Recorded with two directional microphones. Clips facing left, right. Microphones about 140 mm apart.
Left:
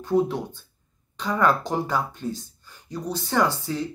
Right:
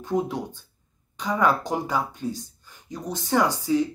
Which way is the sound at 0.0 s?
15° right (ahead or behind).